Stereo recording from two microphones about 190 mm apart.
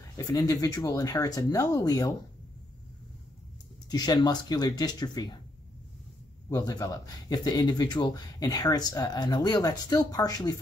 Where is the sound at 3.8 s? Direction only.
20° left (ahead or behind).